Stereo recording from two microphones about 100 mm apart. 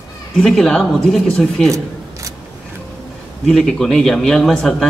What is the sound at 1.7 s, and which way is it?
Shuffling cards, 30° right (ahead or behind).